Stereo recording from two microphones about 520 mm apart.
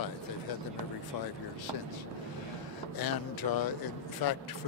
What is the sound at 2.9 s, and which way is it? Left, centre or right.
Speech, left.